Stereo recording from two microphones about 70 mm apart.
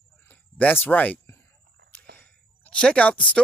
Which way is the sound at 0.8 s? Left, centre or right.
Left.